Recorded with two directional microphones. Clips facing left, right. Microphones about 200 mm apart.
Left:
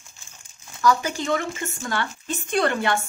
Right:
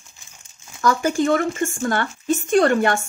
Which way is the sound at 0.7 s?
50° right (ahead or behind).